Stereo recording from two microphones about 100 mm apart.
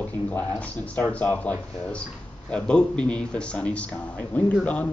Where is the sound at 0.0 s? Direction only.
15° left (ahead or behind).